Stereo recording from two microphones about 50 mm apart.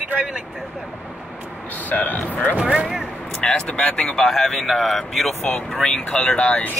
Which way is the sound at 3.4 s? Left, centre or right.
Centre.